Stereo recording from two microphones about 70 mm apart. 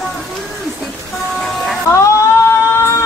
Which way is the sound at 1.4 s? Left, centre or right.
Centre.